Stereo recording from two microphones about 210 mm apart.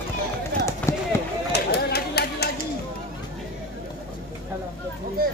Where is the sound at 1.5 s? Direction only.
50° left (ahead or behind).